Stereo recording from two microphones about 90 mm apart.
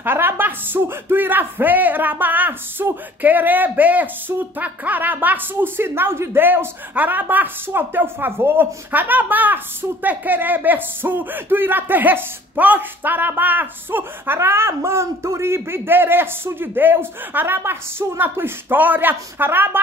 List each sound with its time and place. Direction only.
0.0 s speech: 25° right (ahead or behind)